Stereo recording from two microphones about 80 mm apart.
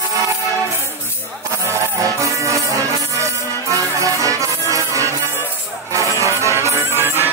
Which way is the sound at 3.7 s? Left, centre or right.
Right.